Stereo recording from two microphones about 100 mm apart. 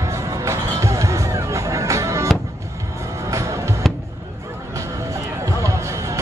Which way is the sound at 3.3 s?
30° right (ahead or behind).